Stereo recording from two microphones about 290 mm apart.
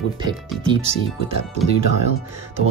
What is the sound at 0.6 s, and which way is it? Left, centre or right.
Speech, centre.